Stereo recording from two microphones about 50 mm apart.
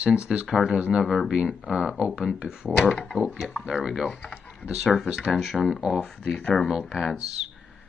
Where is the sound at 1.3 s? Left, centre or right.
Right.